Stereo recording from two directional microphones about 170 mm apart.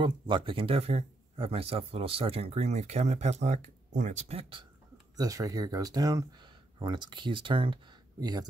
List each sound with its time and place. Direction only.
0.0 s speech: 30° right (ahead or behind)
5.1 s speech: 20° right (ahead or behind)